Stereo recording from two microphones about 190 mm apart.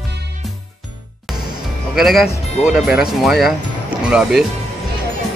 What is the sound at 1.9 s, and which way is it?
Speech, centre (ahead or behind).